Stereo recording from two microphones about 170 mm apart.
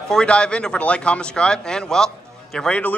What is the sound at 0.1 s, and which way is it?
Speech, 5° left (ahead or behind).